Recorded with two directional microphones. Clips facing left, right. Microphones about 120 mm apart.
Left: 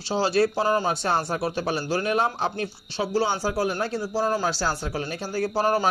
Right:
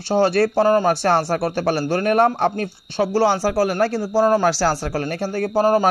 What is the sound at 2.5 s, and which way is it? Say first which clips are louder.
Speech: right 5 dB; 45° right (ahead or behind).